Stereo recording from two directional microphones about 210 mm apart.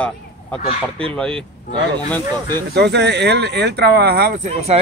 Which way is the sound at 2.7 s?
50° right (ahead or behind).